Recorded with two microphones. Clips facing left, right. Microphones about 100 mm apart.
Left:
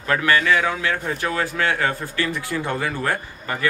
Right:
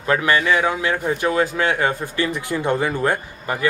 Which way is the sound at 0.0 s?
20° right (ahead or behind).